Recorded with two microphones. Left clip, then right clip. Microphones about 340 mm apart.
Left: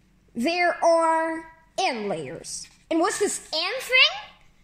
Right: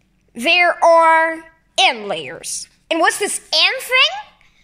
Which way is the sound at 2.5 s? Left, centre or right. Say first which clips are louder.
Right 7 dB; right.